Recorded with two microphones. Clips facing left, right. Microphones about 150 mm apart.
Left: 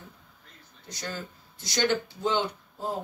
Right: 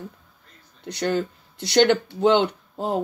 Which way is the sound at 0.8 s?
70° right (ahead or behind).